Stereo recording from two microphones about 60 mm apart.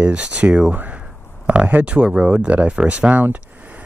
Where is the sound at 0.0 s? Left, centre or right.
Right.